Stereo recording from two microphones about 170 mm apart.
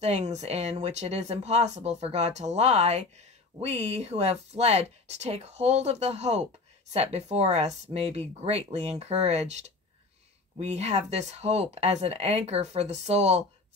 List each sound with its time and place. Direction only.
0.0 s speech: 40° right (ahead or behind)